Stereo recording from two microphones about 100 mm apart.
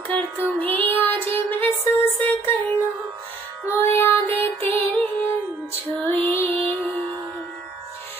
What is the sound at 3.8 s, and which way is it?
Music, 20° left (ahead or behind).